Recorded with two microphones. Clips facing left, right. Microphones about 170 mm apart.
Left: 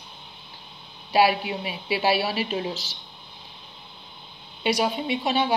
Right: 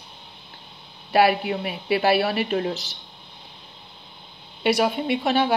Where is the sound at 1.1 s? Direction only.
55° right (ahead or behind).